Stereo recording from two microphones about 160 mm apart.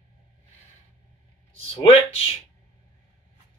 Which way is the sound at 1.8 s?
35° left (ahead or behind).